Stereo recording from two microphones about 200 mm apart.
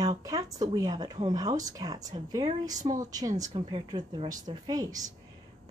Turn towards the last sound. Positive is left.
turn(degrees=-20)  # may be behind; listen again after turning